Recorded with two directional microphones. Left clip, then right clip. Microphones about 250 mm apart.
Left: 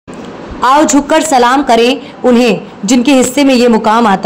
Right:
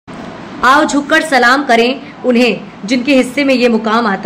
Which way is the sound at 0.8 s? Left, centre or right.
Centre.